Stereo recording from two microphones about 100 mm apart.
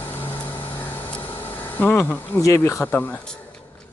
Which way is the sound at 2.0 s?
20° left (ahead or behind).